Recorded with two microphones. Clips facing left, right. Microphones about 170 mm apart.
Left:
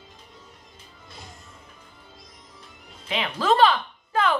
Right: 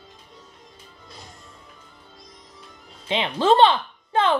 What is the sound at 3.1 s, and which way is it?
A woman's voice, 25° right (ahead or behind).